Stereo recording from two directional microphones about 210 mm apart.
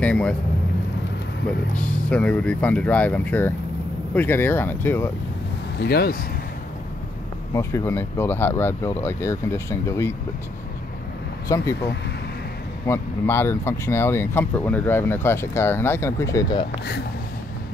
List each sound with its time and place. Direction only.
0.0 s speech: 5° left (ahead or behind)
1.8 s speech: 5° left (ahead or behind)
5.8 s speech: 50° left (ahead or behind)
7.5 s speech: 15° left (ahead or behind)
11.4 s speech: 15° left (ahead or behind)
12.8 s speech: 10° left (ahead or behind)